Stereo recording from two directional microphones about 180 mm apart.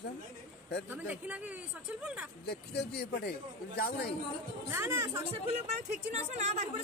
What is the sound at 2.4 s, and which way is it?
Speech, 60° left (ahead or behind).